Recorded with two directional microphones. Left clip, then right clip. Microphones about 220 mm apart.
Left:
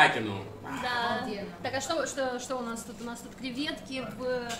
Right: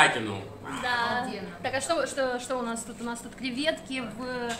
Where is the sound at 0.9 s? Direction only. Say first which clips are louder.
Right 2 dB; 25° right (ahead or behind).